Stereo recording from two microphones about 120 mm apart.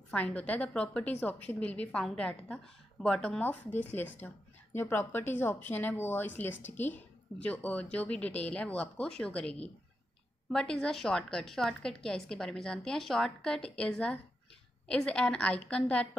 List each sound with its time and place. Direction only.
0.1 s a woman's voice: 10° left (ahead or behind)